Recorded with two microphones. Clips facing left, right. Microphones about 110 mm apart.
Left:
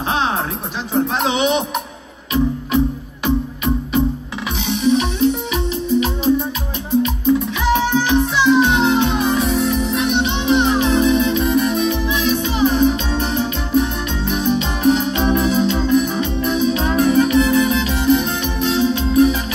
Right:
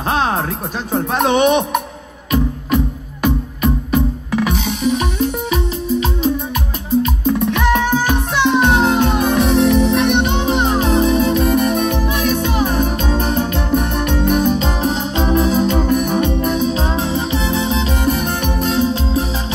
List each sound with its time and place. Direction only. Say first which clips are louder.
0.1 s music: right 2 dB; 45° right (ahead or behind)
1.1 s speech: right 8 dB; 55° right (ahead or behind)
2.3 s music: even; 50° right (ahead or behind)
7.2 s music: right 1 dB; 60° right (ahead or behind)
10.2 s music: even; 40° right (ahead or behind)